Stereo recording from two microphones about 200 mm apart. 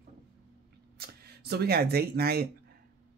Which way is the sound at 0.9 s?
50° right (ahead or behind).